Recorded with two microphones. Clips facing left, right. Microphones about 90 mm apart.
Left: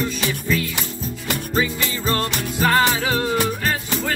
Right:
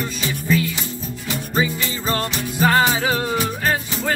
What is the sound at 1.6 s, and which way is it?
Music, 20° right (ahead or behind).